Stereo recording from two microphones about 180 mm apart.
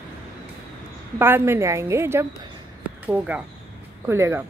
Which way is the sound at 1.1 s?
10° right (ahead or behind).